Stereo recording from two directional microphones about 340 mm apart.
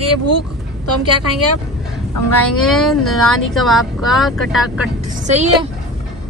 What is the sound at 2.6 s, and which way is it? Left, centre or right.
Speech, centre.